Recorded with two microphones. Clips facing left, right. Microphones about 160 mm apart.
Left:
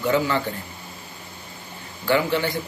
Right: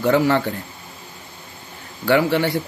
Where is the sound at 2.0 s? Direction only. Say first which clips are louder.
Right 4 dB; 70° right (ahead or behind).